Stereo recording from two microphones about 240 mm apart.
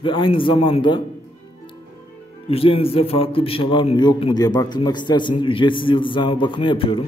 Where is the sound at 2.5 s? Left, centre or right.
Left.